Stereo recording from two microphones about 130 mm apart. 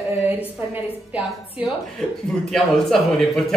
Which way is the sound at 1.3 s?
Centre (ahead or behind).